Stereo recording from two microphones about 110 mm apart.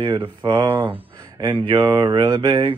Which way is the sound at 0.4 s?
40° right (ahead or behind).